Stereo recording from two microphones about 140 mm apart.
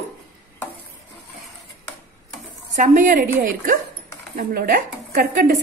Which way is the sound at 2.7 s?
65° right (ahead or behind).